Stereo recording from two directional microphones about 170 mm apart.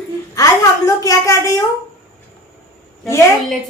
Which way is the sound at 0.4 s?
20° left (ahead or behind).